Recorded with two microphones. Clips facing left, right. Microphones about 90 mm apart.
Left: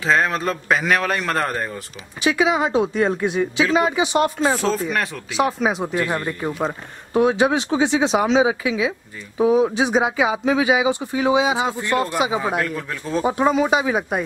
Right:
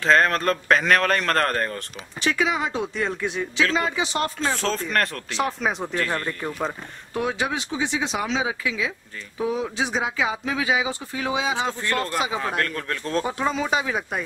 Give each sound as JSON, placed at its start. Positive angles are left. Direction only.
{"t": 0.0, "sound": "speech", "side_deg": 5}
{"t": 7.7, "sound": "speech", "side_deg": 40}
{"t": 8.0, "sound": "speech", "side_deg": 25}
{"t": 13.3, "sound": "speech", "side_deg": 15}